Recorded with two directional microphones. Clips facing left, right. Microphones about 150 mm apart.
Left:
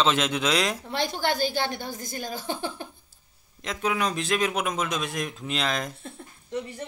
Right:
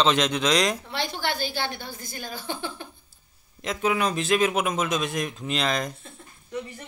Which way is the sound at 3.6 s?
5° right (ahead or behind).